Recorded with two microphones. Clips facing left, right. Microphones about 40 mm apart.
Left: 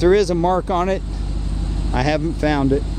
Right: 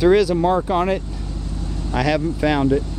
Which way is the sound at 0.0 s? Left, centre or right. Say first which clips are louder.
Even; centre.